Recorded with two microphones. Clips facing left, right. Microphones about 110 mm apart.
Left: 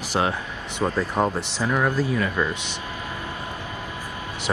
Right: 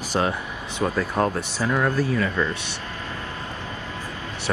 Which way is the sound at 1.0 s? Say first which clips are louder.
Even; 10° left (ahead or behind).